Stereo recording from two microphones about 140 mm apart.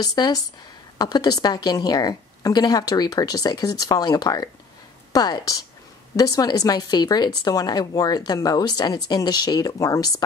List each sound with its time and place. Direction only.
0.0 s speech: 30° left (ahead or behind)